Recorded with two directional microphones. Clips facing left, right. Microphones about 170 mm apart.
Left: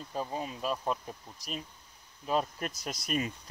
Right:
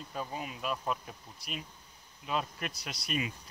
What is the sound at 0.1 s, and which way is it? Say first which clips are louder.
Speech: left 4 dB; 30° left (ahead or behind).